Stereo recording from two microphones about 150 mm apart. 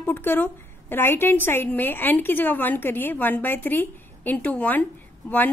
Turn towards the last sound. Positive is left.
turn(degrees=10)  # may be behind; listen again after turning